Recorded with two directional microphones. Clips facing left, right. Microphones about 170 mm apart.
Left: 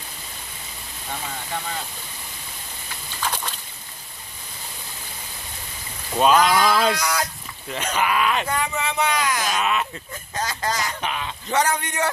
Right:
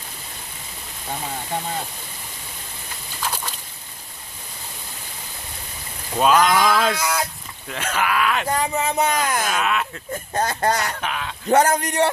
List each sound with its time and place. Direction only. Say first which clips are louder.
3.2 s slosh: even; 5° right (ahead or behind)
6.1 s speech: even; centre (ahead or behind)
8.5 s speech: right 3 dB; 35° right (ahead or behind)
9.6 s speech: right 1 dB; centre (ahead or behind)
10.1 s a sound: right 6 dB; 55° right (ahead or behind)
11.0 s speech: even; centre (ahead or behind)
11.4 s speech: right 6 dB; 50° right (ahead or behind)